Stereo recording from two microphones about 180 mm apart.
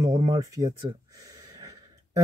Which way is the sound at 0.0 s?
20° right (ahead or behind).